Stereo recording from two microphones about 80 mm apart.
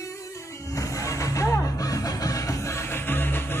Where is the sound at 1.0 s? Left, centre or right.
Left.